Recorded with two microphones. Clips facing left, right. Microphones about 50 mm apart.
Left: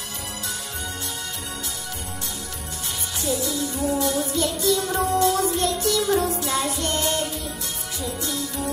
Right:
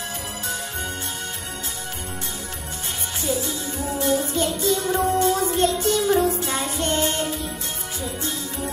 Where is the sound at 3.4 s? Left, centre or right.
Right.